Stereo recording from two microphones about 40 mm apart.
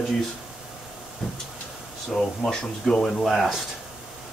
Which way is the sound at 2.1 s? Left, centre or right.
Centre.